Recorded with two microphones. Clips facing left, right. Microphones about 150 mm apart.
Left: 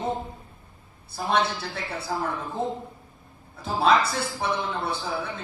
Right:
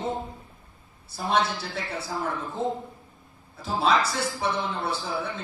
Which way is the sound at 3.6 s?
55° left (ahead or behind).